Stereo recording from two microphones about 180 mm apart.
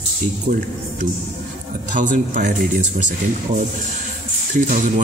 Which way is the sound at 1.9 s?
45° right (ahead or behind).